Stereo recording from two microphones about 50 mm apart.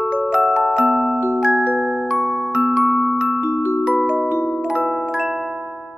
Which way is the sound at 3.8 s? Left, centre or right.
Right.